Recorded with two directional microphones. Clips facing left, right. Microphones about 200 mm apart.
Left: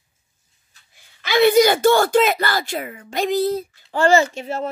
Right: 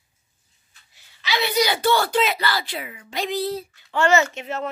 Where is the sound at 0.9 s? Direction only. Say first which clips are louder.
Left 8 dB; 50° left (ahead or behind).